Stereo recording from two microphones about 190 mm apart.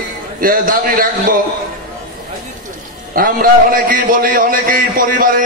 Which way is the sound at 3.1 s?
50° right (ahead or behind).